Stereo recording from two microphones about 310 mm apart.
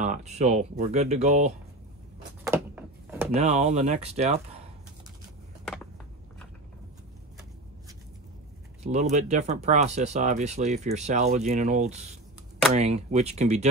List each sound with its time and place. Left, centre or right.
0.0 s speech: right
2.4 s a sound: centre
3.3 s speech: right
8.8 s speech: right